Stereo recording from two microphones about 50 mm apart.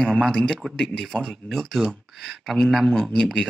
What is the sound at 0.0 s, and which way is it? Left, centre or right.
Speech, centre.